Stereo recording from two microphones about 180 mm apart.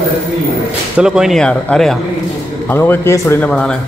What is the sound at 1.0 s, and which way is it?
Speech, 5° right (ahead or behind).